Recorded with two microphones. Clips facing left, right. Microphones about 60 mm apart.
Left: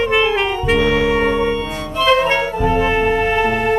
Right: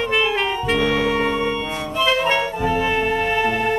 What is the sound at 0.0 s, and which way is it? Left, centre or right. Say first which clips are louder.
Music: left 4 dB; centre.